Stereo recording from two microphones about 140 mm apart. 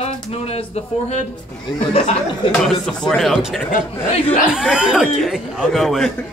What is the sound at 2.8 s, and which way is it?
A man's voice, 5° left (ahead or behind).